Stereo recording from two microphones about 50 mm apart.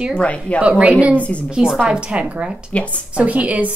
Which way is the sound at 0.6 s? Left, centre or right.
Right.